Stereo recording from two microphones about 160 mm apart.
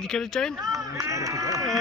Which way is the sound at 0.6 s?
20° right (ahead or behind).